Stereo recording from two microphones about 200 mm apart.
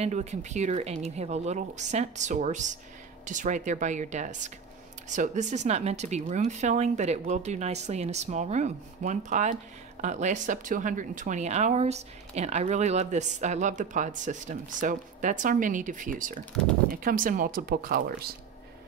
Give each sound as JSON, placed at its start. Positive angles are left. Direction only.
{"t": 0.0, "sound": "speech", "side_deg": -35}